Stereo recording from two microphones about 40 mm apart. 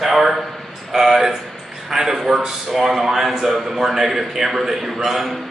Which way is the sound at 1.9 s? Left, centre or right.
Centre.